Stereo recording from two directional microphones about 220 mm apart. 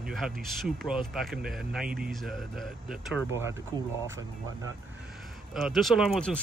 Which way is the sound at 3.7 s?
20° right (ahead or behind).